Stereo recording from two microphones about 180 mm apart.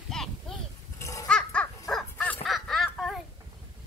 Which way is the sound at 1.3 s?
5° left (ahead or behind).